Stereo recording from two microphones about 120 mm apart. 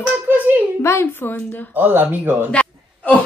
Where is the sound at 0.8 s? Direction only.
20° left (ahead or behind).